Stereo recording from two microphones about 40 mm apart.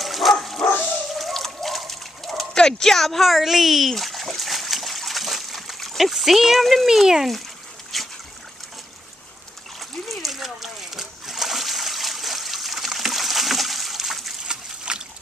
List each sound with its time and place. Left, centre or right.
0.0 s dog: centre
1.1 s water: centre
2.5 s splash: centre
6.9 s speech: centre
7.9 s dog: centre
9.8 s splash: centre
14.4 s a sound: right